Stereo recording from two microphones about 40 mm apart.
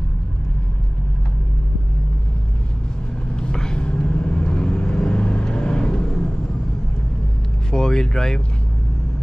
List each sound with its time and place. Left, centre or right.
3.3 s vehicle: left
7.7 s vehicle: centre